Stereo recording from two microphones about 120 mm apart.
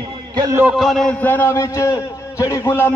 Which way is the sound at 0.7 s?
Centre (ahead or behind).